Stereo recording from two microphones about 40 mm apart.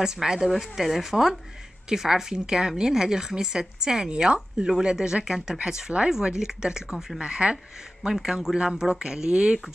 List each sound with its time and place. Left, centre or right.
0.0 s a woman's voice: centre
8.1 s a woman's voice: centre